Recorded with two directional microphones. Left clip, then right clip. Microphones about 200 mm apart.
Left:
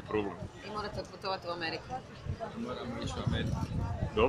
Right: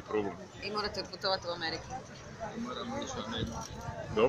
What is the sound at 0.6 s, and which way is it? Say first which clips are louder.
Speech: right 4 dB; 50° right (ahead or behind).